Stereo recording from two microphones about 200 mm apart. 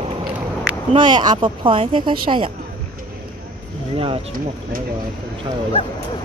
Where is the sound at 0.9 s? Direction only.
25° right (ahead or behind).